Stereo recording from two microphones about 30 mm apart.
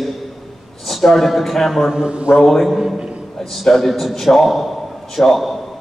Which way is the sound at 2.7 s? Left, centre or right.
Centre.